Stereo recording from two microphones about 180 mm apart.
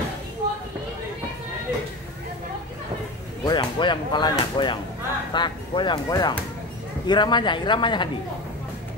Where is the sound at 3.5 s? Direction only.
25° left (ahead or behind).